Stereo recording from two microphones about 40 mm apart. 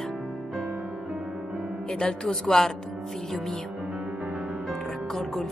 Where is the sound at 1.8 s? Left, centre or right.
Left.